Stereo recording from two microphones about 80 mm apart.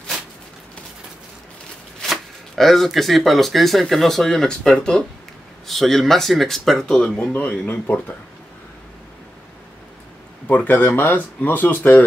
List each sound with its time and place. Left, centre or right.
2.0 s speech: centre; by 8.2 s left
10.4 s speech: left